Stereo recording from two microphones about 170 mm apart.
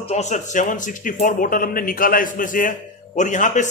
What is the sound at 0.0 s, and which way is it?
Speech, 40° left (ahead or behind).